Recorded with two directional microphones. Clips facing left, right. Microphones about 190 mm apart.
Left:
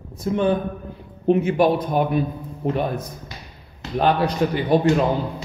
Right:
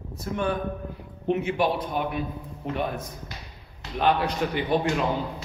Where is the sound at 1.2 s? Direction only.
40° left (ahead or behind).